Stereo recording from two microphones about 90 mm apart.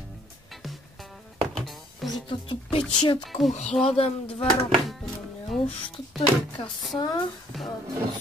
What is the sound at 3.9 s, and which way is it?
Speech, 90° left.